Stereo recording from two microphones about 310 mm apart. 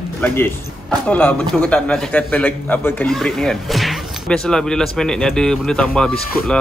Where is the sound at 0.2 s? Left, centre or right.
Centre.